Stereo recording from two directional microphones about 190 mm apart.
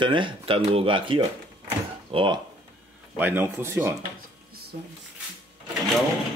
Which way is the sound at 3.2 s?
10° right (ahead or behind).